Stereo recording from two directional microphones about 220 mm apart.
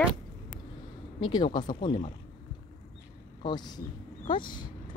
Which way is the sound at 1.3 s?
20° left (ahead or behind).